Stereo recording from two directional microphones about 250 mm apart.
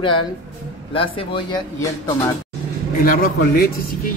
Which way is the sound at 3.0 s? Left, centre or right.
Left.